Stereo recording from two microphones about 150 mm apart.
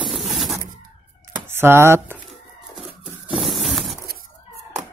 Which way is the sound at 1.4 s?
15° right (ahead or behind).